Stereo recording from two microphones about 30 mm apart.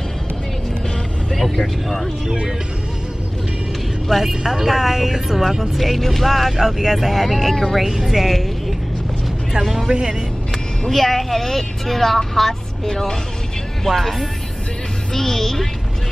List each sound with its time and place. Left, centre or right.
1.3 s speech: centre
4.2 s speech: centre
6.5 s speech: centre
7.2 s speech: centre
7.8 s a woman's voice: centre
10.9 s speech: centre
13.8 s speech: centre